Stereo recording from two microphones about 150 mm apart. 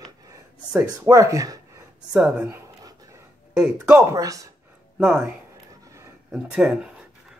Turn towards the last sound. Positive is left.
turn(degrees=-5)  # may be behind; listen again after turning